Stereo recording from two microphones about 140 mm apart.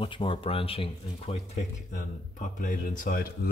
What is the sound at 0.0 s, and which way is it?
Speech, 35° left (ahead or behind).